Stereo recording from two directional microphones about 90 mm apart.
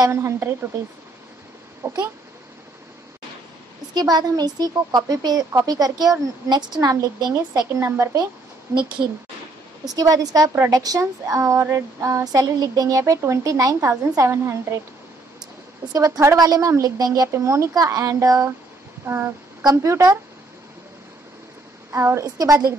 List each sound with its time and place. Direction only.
0.0 s speech: 30° right (ahead or behind)
1.8 s a sound: 25° right (ahead or behind)
3.9 s speech: 50° right (ahead or behind)
7.8 s speech: 30° right (ahead or behind)
9.8 s speech: 45° right (ahead or behind)
15.9 s speech: 35° right (ahead or behind)
19.0 s a sound: 25° right (ahead or behind)
19.6 s speech: 45° right (ahead or behind)
21.9 s a woman's voice: 30° right (ahead or behind)
22.2 s speech: 40° right (ahead or behind)